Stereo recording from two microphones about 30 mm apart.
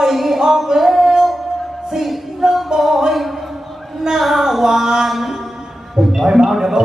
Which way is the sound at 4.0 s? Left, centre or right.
Centre.